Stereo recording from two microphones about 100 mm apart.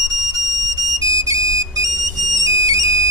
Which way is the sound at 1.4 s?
35° right (ahead or behind).